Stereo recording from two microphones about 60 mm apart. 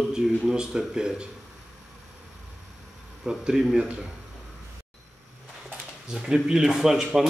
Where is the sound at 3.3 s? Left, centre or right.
Centre.